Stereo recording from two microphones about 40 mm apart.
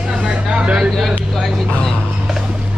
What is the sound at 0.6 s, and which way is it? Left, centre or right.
Speech, right.